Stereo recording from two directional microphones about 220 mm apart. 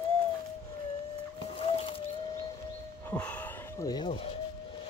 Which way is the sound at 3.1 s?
5° left (ahead or behind).